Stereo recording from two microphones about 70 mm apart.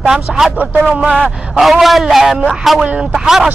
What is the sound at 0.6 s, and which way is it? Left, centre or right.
Speech, right.